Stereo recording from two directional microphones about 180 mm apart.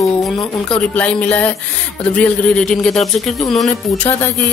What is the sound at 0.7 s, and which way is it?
Speech, 5° left (ahead or behind).